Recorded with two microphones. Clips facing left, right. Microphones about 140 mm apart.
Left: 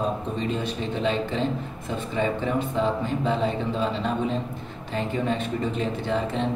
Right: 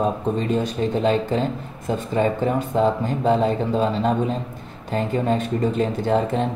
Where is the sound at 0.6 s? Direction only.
40° right (ahead or behind).